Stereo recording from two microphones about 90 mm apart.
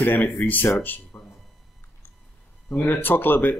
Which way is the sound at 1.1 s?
25° left (ahead or behind).